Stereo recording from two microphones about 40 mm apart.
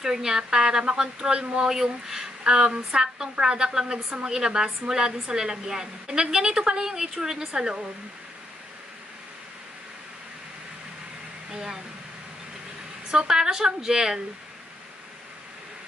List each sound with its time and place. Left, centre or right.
0.0 s a woman's voice: centre
1.7 s a woman's voice: centre
11.5 s speech: centre
13.3 s a woman's voice: centre